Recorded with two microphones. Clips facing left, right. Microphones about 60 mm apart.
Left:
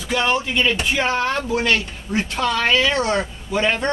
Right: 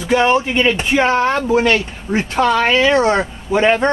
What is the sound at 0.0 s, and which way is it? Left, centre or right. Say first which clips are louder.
Speech: right 7 dB; right.